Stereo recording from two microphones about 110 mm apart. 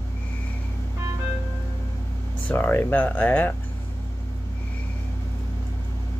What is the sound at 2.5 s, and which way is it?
Speech, 15° left (ahead or behind).